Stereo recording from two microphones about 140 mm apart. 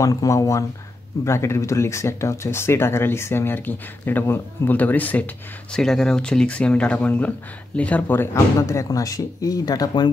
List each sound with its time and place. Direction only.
0.0 s speech: 25° left (ahead or behind)